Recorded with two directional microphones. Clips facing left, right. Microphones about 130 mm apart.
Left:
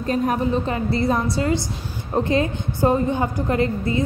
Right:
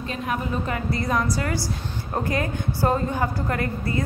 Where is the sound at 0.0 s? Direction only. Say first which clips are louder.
Left 7 dB; 40° left (ahead or behind).